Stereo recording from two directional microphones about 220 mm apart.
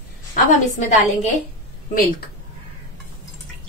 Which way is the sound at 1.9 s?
40° left (ahead or behind).